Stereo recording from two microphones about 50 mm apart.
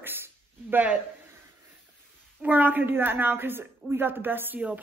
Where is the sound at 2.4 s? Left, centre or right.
Right.